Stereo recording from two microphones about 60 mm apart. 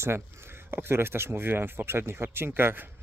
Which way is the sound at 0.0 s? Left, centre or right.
Right.